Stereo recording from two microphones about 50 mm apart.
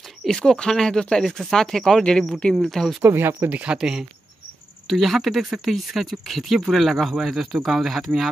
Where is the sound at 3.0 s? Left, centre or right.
Right.